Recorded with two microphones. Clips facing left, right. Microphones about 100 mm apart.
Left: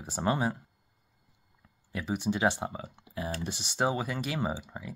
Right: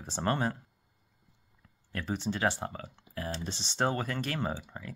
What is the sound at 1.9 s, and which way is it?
Speech, 10° left (ahead or behind).